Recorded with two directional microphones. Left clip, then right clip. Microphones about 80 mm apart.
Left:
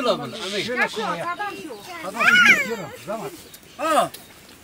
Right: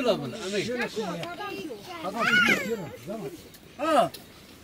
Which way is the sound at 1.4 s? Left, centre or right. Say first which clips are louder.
Left 5 dB; centre.